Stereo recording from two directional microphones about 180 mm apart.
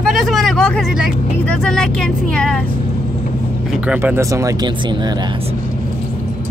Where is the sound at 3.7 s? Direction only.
5° right (ahead or behind); by 5.3 s 25° right (ahead or behind).